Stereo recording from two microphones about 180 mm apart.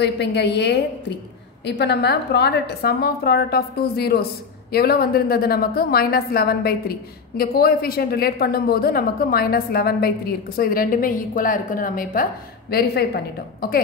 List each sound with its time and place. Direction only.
0.0 s a woman's voice: 70° left (ahead or behind); by 12.3 s 50° left (ahead or behind)
12.7 s a woman's voice: 60° left (ahead or behind)